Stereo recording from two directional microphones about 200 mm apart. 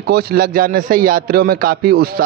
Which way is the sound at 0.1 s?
50° right (ahead or behind).